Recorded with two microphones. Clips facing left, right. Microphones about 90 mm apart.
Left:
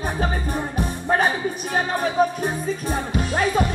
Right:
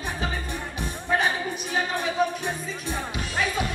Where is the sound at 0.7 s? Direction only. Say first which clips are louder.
Left 4 dB; 40° left (ahead or behind).